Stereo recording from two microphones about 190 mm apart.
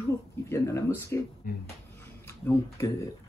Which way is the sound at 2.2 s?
15° left (ahead or behind).